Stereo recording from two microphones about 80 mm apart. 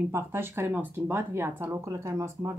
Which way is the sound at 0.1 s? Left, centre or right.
Right.